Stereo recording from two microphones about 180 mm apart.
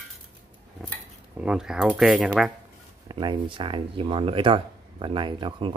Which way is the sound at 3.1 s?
25° right (ahead or behind).